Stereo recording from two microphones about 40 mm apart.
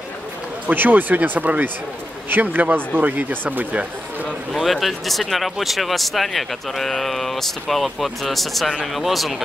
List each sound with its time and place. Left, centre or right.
0.7 s speech: right
4.5 s speech: centre